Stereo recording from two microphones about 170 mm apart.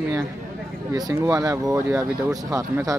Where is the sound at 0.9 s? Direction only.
20° right (ahead or behind).